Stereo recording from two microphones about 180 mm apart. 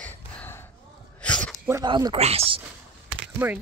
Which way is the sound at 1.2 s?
5° left (ahead or behind).